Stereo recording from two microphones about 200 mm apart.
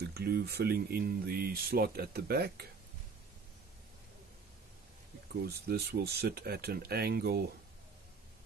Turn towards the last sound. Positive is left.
turn(degrees=-50)  # may be behind; listen again after turning